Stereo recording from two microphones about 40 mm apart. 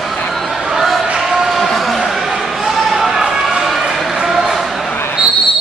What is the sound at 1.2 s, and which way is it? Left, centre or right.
Basketball bounce, centre.